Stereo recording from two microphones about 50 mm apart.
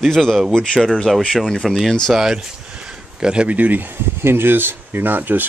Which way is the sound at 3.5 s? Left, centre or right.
Right.